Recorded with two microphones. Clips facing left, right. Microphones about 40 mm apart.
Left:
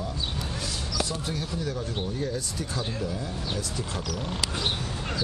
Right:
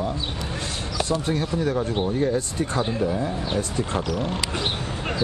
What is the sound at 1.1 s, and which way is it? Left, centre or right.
Speech, right.